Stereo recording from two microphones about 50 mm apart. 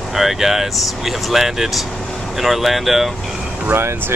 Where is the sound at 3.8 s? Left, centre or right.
Right.